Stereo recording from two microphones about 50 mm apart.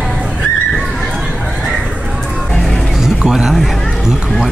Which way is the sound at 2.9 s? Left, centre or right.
Centre.